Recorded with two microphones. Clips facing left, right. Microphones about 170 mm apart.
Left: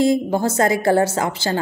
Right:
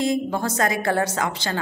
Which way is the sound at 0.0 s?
30° left (ahead or behind).